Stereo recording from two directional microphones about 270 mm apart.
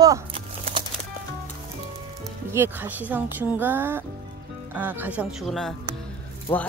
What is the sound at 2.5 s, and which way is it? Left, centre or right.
Speech, centre.